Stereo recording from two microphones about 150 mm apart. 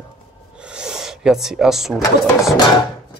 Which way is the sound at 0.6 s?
5° right (ahead or behind).